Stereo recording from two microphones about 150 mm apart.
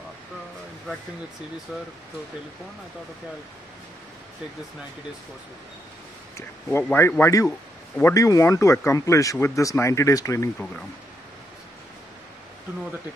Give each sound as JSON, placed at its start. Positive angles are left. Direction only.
{"t": 6.3, "sound": "speech", "side_deg": 15}